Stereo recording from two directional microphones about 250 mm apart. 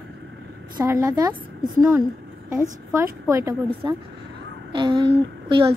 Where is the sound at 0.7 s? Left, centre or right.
Centre.